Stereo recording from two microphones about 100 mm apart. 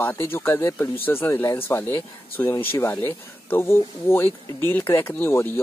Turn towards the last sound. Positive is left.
turn(degrees=20)  # may be behind; listen again after turning